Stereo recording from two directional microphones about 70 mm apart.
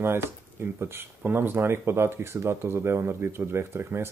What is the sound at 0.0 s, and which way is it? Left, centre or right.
Speech, right.